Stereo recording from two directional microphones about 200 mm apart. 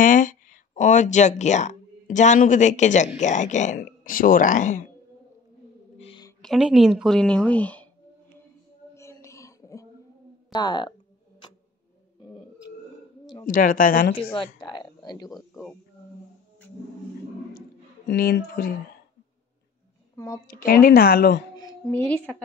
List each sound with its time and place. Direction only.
0.0 s speech: 40° left (ahead or behind)
5.9 s a sound: 30° left (ahead or behind)
6.4 s a woman's voice: centre (ahead or behind)
8.9 s a sound: 15° left (ahead or behind)
10.5 s speech: 20° left (ahead or behind)
13.5 s speech: 45° left (ahead or behind)
14.3 s speech: 25° left (ahead or behind)
15.3 s a woman's voice: centre (ahead or behind)
17.6 s a sound: 50° left (ahead or behind)
20.5 s speech: 45° left (ahead or behind)
21.5 s a sound: 15° left (ahead or behind)
22.3 s a woman's voice: 5° left (ahead or behind)